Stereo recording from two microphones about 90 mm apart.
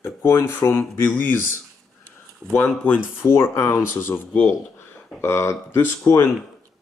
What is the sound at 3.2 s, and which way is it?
Speech, 30° left (ahead or behind).